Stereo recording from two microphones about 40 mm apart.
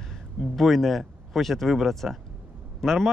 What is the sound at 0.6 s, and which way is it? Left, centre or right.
A man's voice, centre.